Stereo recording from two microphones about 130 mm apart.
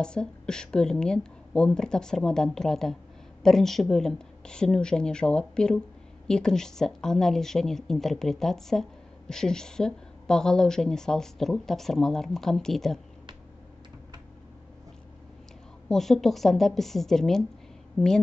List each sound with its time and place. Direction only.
0.0 s speech: 5° left (ahead or behind)
15.9 s speech: centre (ahead or behind)